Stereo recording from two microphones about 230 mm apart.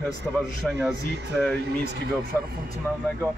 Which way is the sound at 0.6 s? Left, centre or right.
Centre.